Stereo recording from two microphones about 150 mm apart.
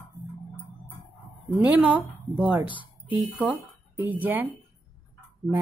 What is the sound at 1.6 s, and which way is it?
Speech, 10° right (ahead or behind).